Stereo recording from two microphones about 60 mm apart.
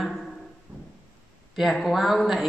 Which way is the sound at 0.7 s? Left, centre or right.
Right.